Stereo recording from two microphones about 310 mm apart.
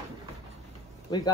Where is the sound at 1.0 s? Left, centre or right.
Centre.